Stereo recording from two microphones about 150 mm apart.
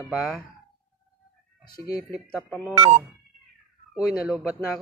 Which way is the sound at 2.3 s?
Centre (ahead or behind).